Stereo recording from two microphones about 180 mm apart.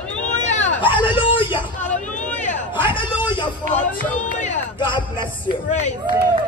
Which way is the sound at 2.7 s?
25° left (ahead or behind).